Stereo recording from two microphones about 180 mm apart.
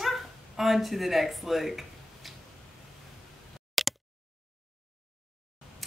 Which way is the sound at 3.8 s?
Centre (ahead or behind).